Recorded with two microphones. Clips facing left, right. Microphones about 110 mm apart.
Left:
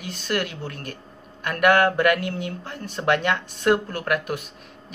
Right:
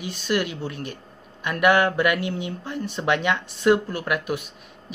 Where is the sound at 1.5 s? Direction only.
5° right (ahead or behind).